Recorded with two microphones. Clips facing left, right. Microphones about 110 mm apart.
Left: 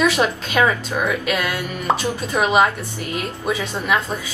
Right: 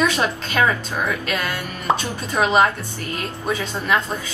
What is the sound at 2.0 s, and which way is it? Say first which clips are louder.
Speech: left 1 dB; 15° left (ahead or behind).